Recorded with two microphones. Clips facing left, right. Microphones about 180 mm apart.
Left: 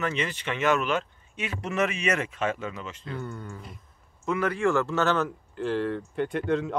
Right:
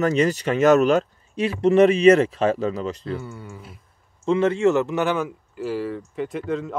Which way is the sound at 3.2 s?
5° right (ahead or behind).